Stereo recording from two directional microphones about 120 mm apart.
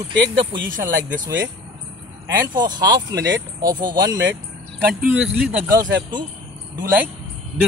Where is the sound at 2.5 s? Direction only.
35° right (ahead or behind).